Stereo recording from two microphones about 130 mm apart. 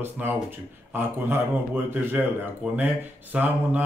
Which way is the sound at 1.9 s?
15° right (ahead or behind).